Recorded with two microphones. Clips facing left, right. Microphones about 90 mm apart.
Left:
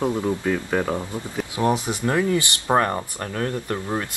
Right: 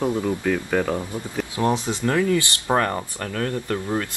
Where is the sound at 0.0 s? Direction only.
15° left (ahead or behind).